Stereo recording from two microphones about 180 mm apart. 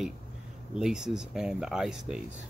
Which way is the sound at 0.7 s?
5° right (ahead or behind).